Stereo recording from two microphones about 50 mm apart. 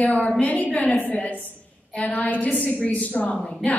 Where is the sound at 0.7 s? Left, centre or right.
Left.